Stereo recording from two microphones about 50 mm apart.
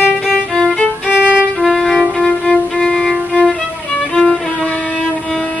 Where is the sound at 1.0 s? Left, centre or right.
Right.